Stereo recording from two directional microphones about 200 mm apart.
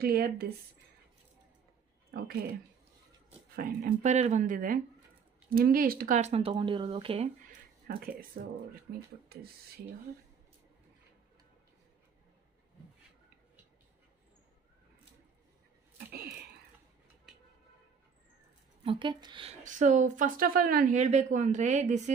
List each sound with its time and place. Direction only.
0.0 s speech: 50° right (ahead or behind)
2.0 s a sound: 50° right (ahead or behind)
3.5 s a woman's voice: 45° right (ahead or behind); by 7.2 s 25° right (ahead or behind)
7.8 s speech: 50° right (ahead or behind)
18.9 s speech: 25° right (ahead or behind)
19.6 s a woman's voice: 40° right (ahead or behind)